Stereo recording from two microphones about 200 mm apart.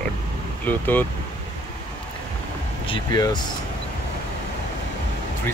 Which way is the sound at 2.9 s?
20° left (ahead or behind).